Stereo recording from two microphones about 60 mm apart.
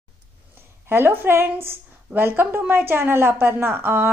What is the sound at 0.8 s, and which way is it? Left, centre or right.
Speech, right.